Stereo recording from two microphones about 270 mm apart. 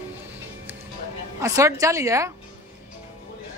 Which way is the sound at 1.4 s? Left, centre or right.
Centre.